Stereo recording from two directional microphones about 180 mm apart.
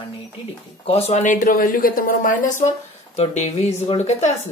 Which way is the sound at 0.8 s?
35° left (ahead or behind).